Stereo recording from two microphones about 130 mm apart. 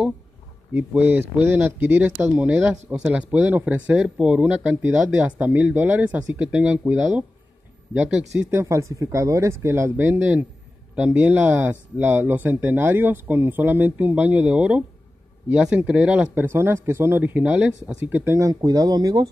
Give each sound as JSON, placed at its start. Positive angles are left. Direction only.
{"t": 0.7, "sound": "speech", "side_deg": -15}
{"t": 8.5, "sound": "speech", "side_deg": -20}